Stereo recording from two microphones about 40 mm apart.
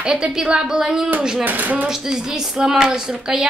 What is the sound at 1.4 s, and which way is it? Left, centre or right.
Speech, right.